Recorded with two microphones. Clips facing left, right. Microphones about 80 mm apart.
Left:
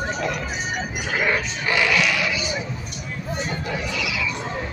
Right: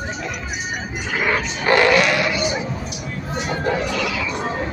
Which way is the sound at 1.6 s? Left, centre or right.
Right.